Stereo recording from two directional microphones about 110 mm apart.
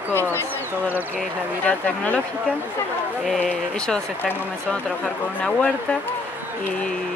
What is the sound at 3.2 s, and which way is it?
Speech, 5° left (ahead or behind).